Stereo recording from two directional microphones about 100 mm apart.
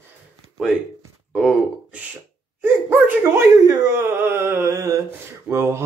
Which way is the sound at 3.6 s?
30° right (ahead or behind).